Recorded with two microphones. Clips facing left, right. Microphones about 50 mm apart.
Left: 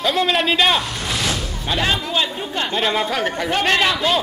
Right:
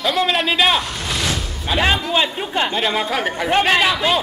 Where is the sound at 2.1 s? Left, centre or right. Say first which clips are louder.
Right 3 dB; centre.